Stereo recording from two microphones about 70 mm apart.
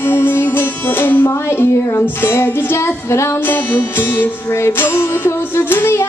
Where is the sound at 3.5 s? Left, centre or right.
Left.